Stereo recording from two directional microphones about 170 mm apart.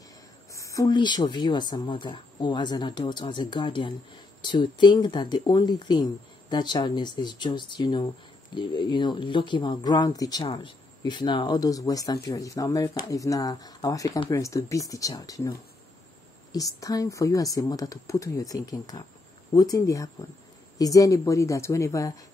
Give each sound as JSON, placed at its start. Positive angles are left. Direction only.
{"t": 0.5, "sound": "speech", "side_deg": 20}
{"t": 16.5, "sound": "speech", "side_deg": 20}